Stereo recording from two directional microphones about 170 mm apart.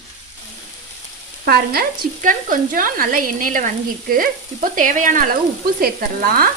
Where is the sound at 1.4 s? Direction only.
65° right (ahead or behind).